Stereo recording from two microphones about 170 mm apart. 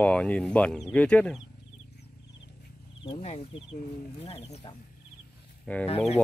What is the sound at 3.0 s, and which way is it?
Speech, 35° left (ahead or behind).